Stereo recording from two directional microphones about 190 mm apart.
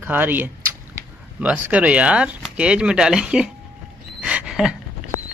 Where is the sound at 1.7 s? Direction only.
5° right (ahead or behind).